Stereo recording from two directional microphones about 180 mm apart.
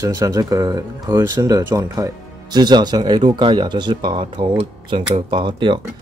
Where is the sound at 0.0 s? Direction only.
20° right (ahead or behind).